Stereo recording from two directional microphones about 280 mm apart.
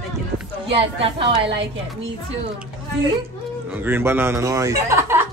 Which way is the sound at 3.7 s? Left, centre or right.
Centre.